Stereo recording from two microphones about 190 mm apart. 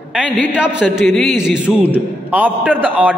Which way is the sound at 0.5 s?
5° right (ahead or behind).